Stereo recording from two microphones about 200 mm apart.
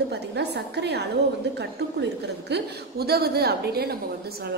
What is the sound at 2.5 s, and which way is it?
A woman's voice, 50° right (ahead or behind).